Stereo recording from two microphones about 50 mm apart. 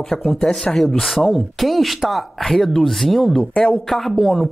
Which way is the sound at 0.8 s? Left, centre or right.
Centre.